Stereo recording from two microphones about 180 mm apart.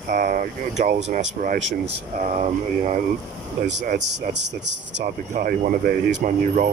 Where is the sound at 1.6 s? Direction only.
85° right.